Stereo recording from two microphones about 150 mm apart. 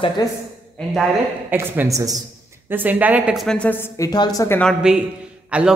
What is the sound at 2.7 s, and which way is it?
Speech, 10° right (ahead or behind).